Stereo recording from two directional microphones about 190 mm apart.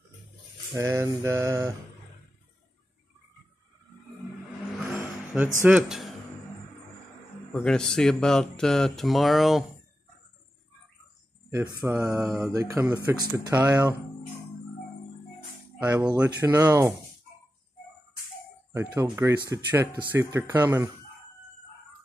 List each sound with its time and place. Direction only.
0.7 s speech: 15° right (ahead or behind)
4.7 s vehicle: 5° right (ahead or behind)
5.6 s speech: 5° right (ahead or behind)
7.5 s speech: 5° left (ahead or behind)
11.5 s speech: 20° right (ahead or behind)
12.2 s speech: centre (ahead or behind)
12.6 s speech: 15° right (ahead or behind)
15.8 s speech: 5° right (ahead or behind)
18.7 s speech: 10° right (ahead or behind)